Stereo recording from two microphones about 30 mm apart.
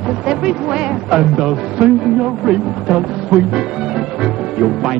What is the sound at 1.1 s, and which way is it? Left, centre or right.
A man's voice, centre.